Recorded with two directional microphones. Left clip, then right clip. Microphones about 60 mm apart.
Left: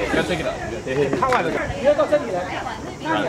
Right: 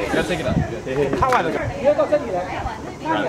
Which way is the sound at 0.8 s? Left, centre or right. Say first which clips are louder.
Left 1 dB; centre.